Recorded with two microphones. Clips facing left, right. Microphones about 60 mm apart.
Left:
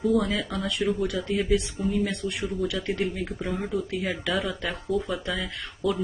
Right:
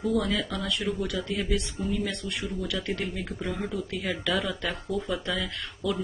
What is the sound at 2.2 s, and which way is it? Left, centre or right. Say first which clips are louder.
Speech: left 4 dB; centre.